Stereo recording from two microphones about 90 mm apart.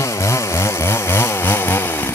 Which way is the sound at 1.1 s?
25° left (ahead or behind).